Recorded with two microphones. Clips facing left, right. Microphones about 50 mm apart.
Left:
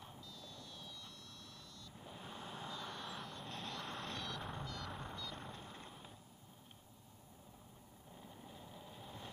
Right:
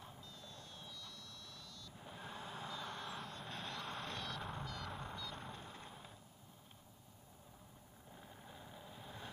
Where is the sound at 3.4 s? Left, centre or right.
Centre.